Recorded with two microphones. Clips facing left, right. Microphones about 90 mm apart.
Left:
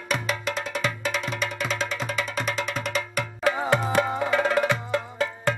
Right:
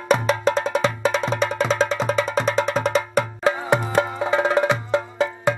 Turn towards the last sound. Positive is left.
turn(degrees=-20)  # may be behind; listen again after turning